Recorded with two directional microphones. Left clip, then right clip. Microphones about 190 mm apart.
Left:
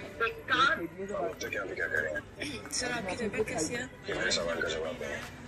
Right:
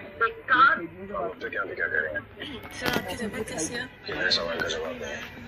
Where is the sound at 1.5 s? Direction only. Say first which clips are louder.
Right 4 dB; 40° left (ahead or behind).